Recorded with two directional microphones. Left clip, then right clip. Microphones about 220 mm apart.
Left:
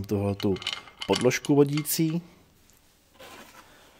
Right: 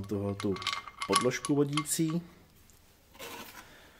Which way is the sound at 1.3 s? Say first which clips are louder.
Left 7 dB; 40° left (ahead or behind).